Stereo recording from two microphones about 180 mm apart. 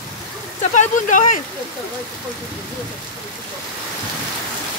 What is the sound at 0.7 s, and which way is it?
Speech, 45° left (ahead or behind).